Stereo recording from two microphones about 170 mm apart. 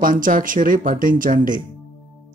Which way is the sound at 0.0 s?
50° right (ahead or behind).